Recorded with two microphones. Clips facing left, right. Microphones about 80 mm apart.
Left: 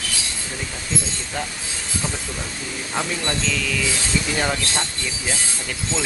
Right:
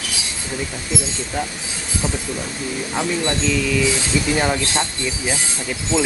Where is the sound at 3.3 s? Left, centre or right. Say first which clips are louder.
Right 4 dB; centre.